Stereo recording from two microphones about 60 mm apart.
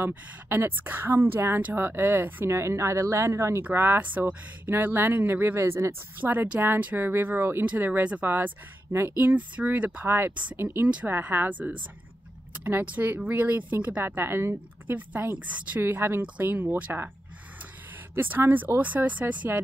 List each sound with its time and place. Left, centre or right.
0.5 s speech: right
2.4 s speech: right
3.7 s speech: right
6.1 s speech: right
8.0 s speech: right
8.3 s speech: right
9.2 s speech: right
10.0 s speech: right
14.0 s speech: right
15.8 s speech: right
18.1 s speech: right